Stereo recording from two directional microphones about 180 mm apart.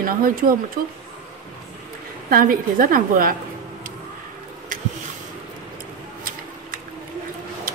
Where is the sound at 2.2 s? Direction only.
50° right (ahead or behind).